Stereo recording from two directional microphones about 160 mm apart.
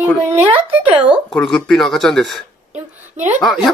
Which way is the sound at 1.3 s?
5° left (ahead or behind).